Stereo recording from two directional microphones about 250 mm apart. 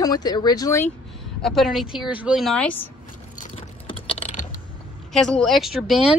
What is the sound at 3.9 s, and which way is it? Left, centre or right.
Typing, left.